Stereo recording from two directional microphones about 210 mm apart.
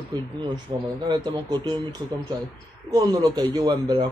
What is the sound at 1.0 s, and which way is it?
Speech, 20° right (ahead or behind).